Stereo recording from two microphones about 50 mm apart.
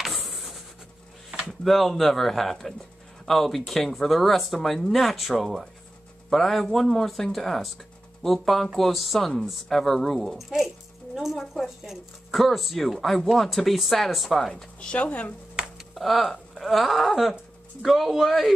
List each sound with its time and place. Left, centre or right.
0.0 s printer: centre
1.6 s speech: centre
14.5 s speech: centre
15.9 s speech: centre